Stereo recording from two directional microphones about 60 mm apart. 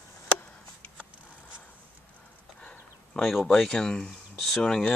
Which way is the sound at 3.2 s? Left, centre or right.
Centre.